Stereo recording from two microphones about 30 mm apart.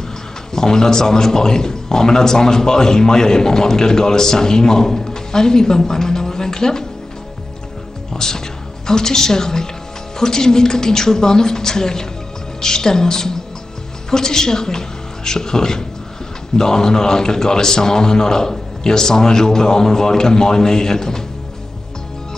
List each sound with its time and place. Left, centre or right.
0.5 s a man's voice: left
8.1 s a man's voice: centre